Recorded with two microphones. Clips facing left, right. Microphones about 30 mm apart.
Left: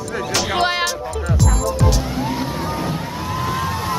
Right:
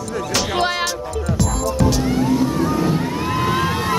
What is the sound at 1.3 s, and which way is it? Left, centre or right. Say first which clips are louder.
Music: even; centre.